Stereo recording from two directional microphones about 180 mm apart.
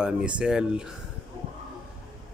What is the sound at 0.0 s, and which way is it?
Speech, 5° right (ahead or behind).